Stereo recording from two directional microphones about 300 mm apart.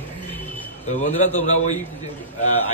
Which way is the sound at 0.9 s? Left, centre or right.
Left.